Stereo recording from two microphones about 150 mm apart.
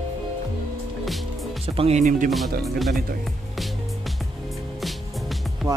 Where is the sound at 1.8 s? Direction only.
45° right (ahead or behind).